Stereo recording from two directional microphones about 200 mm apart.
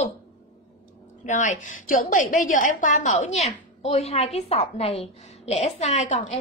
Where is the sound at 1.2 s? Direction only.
40° left (ahead or behind).